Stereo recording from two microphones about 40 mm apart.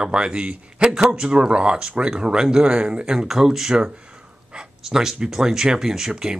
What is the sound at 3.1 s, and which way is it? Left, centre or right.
Speech, centre.